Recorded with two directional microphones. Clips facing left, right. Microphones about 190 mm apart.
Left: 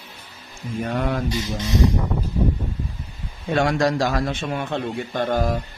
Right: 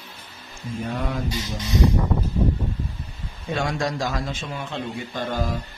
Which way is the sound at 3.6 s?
65° left (ahead or behind).